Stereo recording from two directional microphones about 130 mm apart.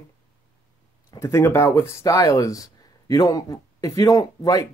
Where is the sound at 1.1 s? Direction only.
20° left (ahead or behind).